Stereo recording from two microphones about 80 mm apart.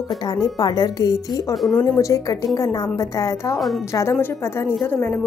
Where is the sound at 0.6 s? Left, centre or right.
Left.